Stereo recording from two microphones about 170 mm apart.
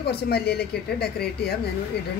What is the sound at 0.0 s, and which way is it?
Speech, 70° left (ahead or behind).